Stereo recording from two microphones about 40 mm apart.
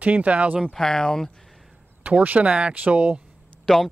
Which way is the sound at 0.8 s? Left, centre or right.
Centre.